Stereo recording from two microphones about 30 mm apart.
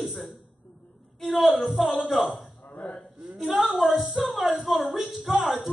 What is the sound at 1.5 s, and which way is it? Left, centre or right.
A man's voice, centre.